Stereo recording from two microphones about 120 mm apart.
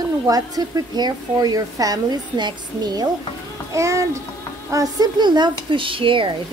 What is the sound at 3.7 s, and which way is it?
A child's voice, 25° right (ahead or behind).